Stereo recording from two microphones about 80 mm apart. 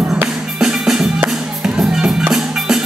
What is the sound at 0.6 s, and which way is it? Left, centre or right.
Music, centre.